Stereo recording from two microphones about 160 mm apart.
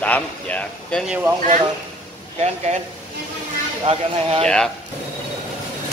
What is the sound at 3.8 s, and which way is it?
Speech, 40° right (ahead or behind).